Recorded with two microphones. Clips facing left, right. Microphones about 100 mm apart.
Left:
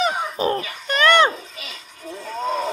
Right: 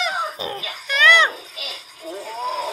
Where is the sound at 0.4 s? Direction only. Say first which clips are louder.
Left 7 dB; 45° left (ahead or behind).